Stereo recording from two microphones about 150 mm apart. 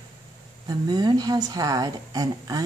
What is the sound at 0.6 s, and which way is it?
A woman's voice, 25° right (ahead or behind).